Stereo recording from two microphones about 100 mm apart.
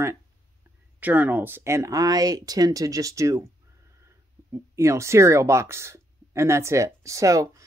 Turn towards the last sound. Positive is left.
turn(degrees=-35)  # may be behind; listen again after turning